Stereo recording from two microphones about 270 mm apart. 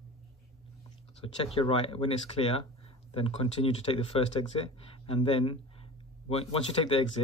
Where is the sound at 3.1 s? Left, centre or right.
Left.